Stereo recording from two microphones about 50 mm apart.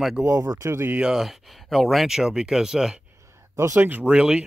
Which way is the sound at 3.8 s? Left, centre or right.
Right.